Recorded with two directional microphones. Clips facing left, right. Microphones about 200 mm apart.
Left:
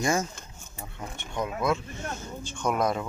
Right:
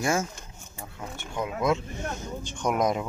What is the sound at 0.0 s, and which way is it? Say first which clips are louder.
Speech: even; 5° right (ahead or behind).